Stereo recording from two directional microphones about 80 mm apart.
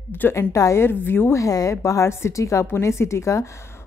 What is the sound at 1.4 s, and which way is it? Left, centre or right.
A woman's voice, left.